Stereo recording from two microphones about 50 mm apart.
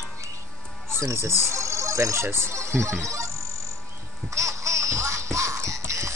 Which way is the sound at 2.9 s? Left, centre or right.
Right.